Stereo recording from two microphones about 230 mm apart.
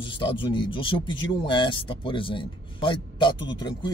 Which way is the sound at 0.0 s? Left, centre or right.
Left.